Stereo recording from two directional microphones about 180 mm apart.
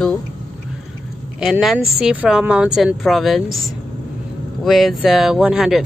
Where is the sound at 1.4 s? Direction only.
Centre (ahead or behind).